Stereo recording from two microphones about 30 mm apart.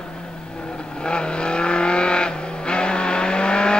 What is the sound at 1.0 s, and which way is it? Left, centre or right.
Vehicle, left.